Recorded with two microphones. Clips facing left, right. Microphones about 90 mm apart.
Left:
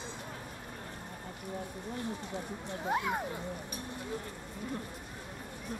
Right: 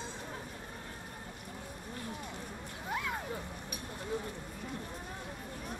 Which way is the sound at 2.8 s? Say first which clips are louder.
Left 5 dB; 25° left (ahead or behind).